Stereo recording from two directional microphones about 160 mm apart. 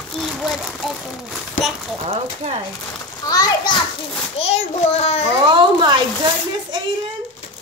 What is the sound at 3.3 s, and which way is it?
Speech, 25° left (ahead or behind).